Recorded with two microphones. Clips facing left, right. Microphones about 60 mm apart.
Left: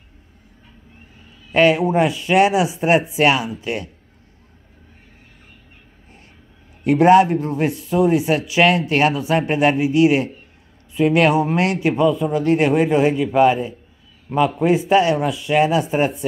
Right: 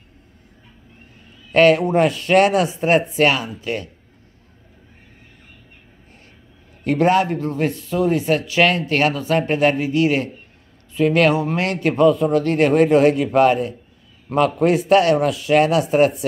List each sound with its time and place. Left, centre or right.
1.5 s speech: centre
6.9 s speech: left
11.9 s a man's voice: centre